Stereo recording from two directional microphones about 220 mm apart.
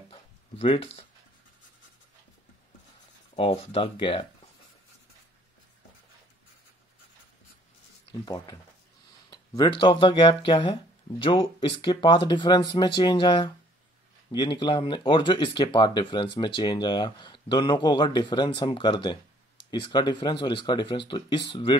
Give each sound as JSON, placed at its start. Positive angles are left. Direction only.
{"t": 0.1, "sound": "a sound", "side_deg": 25}
{"t": 3.3, "sound": "speech", "side_deg": 25}
{"t": 8.1, "sound": "speech", "side_deg": 15}
{"t": 9.6, "sound": "speech", "side_deg": 20}